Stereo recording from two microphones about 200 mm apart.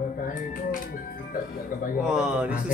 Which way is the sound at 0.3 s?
45° left (ahead or behind).